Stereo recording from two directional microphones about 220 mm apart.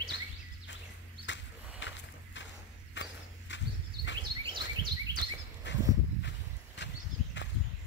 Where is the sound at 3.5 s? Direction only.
55° left (ahead or behind).